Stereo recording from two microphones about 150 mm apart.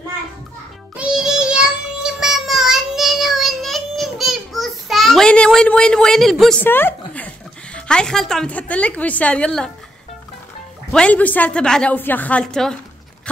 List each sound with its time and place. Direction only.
0.9 s child singing: 5° right (ahead or behind)
6.6 s a woman's voice: 15° left (ahead or behind)
10.9 s a woman's voice: 10° left (ahead or behind)